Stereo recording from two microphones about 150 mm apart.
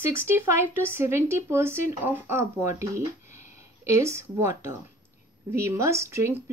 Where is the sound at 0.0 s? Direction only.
15° right (ahead or behind).